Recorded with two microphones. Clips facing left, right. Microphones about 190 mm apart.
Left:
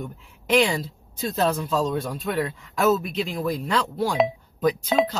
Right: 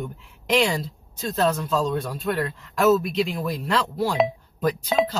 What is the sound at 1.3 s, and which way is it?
A man's voice, 10° left (ahead or behind).